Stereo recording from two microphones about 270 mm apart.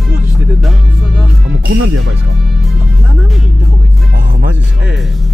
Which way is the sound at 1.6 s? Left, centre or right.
Right.